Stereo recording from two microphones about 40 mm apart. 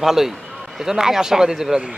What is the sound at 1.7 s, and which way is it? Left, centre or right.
Speech, right.